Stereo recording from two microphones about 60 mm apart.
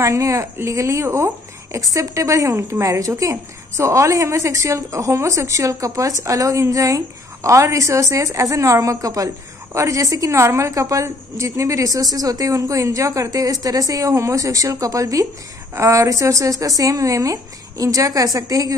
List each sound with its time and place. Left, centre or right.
0.0 s speech: right
10.3 s speech: right
15.7 s speech: right